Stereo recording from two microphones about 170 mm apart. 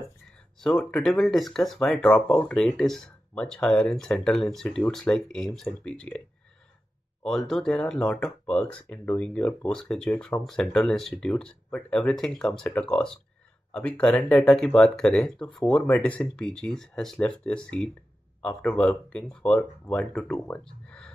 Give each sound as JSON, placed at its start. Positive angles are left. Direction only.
{"t": 0.6, "sound": "speech", "side_deg": 5}
{"t": 7.2, "sound": "speech", "side_deg": 5}